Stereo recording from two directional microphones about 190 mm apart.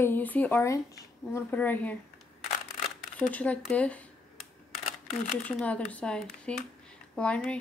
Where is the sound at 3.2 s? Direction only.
10° left (ahead or behind).